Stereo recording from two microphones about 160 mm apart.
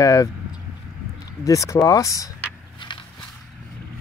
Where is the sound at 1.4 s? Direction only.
20° left (ahead or behind).